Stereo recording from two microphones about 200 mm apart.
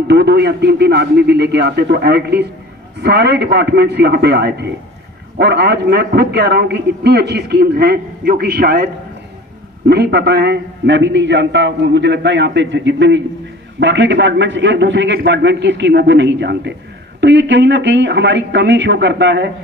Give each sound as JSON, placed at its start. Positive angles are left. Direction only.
{"t": 0.1, "sound": "a man's voice", "side_deg": -55}